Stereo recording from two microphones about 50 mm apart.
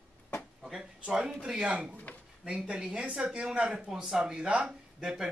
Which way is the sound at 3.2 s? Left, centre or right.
Right.